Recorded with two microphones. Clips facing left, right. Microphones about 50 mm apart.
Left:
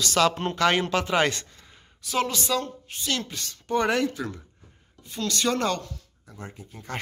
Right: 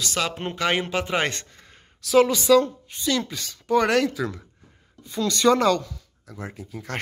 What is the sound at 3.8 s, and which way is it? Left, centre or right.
Speech, right.